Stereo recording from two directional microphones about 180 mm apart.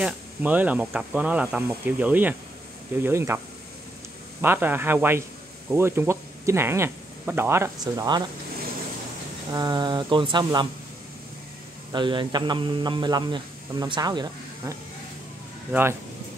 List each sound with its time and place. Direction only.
0.0 s speech: 10° right (ahead or behind)
4.4 s speech: 10° right (ahead or behind)
9.5 s a man's voice: 25° right (ahead or behind)
11.9 s a man's voice: 25° right (ahead or behind)